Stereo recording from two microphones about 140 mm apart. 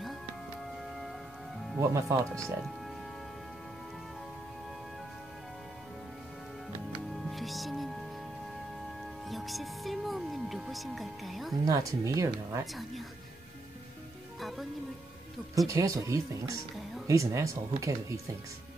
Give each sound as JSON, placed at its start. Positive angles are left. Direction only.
{"t": 1.8, "sound": "speech", "side_deg": -20}
{"t": 7.2, "sound": "music", "side_deg": 0}
{"t": 9.3, "sound": "music", "side_deg": 0}
{"t": 11.6, "sound": "speech", "side_deg": -25}
{"t": 15.5, "sound": "speech", "side_deg": -25}